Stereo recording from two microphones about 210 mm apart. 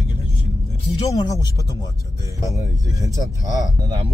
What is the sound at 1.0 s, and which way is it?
Speech, 15° left (ahead or behind).